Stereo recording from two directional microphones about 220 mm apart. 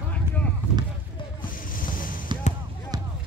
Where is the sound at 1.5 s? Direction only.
40° left (ahead or behind).